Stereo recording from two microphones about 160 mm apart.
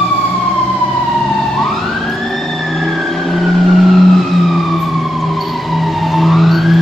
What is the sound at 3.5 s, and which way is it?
Emergency vehicle, centre (ahead or behind).